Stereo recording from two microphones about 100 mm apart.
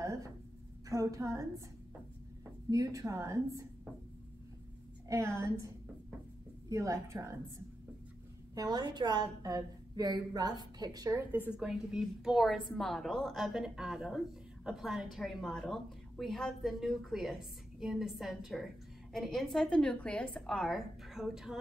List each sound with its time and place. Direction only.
0.0 s a sound: 30° right (ahead or behind)
0.8 s a woman's voice: 35° right (ahead or behind)
2.7 s a woman's voice: 35° right (ahead or behind)
5.0 s a woman's voice: 30° right (ahead or behind)
6.7 s a woman's voice: 30° right (ahead or behind)
8.5 s a woman's voice: 40° right (ahead or behind)
11.1 s a woman's voice: 20° right (ahead or behind)
11.6 s a woman's voice: 5° right (ahead or behind)